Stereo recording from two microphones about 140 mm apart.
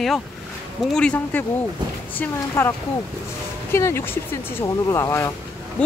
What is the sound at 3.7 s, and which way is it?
Speech, 20° left (ahead or behind).